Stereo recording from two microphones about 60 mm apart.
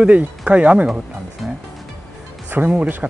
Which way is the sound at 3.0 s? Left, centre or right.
Right.